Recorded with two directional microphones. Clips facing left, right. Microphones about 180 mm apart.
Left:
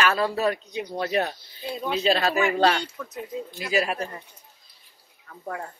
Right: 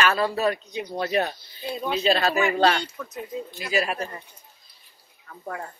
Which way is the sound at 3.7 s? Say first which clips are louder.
Left 1 dB; 20° left (ahead or behind).